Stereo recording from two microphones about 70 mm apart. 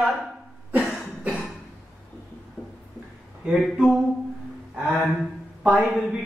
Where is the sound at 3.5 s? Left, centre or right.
Centre.